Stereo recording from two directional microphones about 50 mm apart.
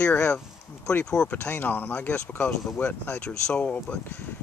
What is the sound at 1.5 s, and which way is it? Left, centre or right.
Speech, left.